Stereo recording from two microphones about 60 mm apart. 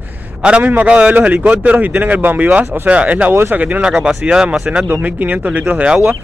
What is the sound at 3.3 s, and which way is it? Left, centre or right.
Speech, right.